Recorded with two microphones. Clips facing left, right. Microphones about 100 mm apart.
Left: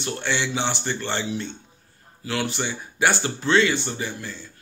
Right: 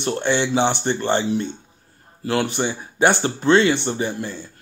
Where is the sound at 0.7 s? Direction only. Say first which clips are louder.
Right 6 dB; 20° right (ahead or behind).